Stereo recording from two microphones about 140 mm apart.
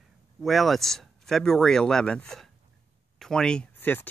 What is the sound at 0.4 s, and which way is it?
Speech, centre (ahead or behind).